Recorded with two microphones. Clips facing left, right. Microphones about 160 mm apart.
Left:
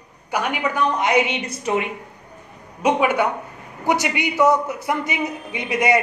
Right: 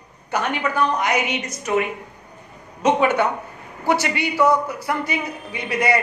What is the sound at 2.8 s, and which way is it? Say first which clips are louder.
A woman's voice: right 1 dB; 10° left (ahead or behind).